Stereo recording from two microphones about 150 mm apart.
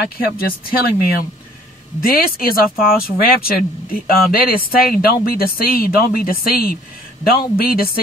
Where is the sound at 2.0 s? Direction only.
75° left (ahead or behind).